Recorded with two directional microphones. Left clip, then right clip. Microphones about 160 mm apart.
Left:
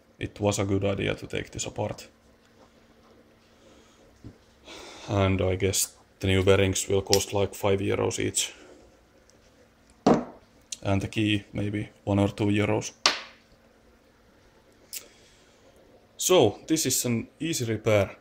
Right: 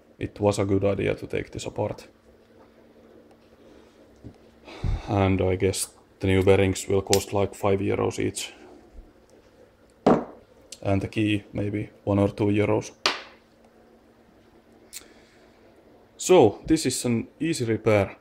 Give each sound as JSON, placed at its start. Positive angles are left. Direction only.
{"t": 0.2, "sound": "speech", "side_deg": -15}
{"t": 4.6, "sound": "speech", "side_deg": -20}
{"t": 10.7, "sound": "speech", "side_deg": -15}
{"t": 16.2, "sound": "speech", "side_deg": -25}